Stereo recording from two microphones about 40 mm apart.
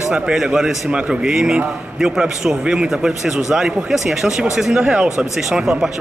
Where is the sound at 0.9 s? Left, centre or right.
Right.